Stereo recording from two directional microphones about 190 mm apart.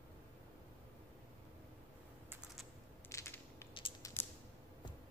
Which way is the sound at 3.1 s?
15° left (ahead or behind).